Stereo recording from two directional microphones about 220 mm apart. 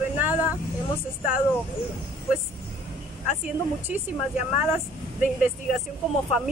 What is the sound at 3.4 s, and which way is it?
Speech, 5° right (ahead or behind).